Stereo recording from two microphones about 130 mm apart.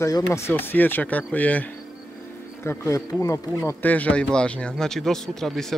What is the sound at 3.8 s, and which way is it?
Speech, 10° left (ahead or behind).